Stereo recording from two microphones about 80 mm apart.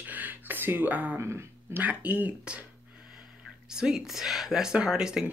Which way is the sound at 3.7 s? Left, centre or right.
Centre.